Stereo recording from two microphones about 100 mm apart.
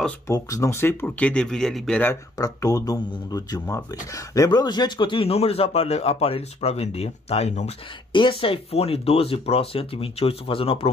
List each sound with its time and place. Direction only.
0.3 s speech: 30° left (ahead or behind)
1.3 s speech: 5° left (ahead or behind)
2.3 s speech: 35° left (ahead or behind)
4.5 s speech: 45° left (ahead or behind)
5.3 s speech: 80° left
8.1 s speech: 55° left (ahead or behind)